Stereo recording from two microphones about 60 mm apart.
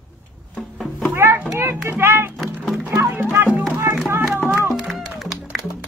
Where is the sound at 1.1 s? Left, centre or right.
Right.